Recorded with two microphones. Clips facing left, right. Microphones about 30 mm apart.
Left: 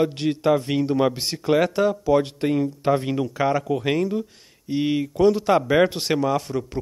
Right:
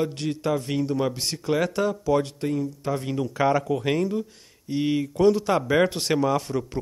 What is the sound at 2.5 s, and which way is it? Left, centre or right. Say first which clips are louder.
Speech: left 6 dB; left.